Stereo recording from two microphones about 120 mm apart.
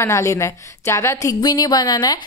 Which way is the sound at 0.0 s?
25° left (ahead or behind).